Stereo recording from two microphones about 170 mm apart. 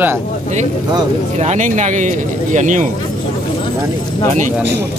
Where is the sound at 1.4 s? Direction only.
45° right (ahead or behind).